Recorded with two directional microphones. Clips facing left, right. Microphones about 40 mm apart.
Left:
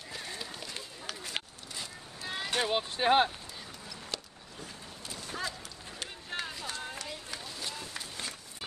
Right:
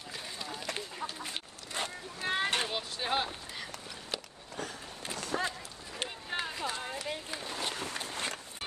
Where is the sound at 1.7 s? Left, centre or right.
Right.